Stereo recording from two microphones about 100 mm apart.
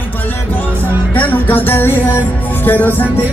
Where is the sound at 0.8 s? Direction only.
20° left (ahead or behind).